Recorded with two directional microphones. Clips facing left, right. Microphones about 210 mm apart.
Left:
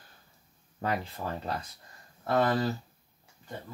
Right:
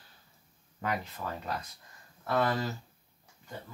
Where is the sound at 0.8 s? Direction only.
30° left (ahead or behind).